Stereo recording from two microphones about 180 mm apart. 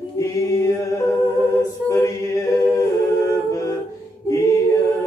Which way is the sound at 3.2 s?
15° left (ahead or behind).